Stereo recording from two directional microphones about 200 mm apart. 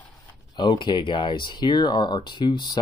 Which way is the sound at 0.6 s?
25° left (ahead or behind).